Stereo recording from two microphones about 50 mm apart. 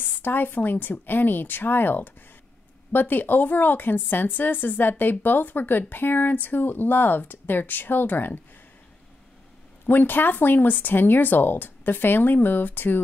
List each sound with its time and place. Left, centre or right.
0.2 s speech: left
9.8 s speech: left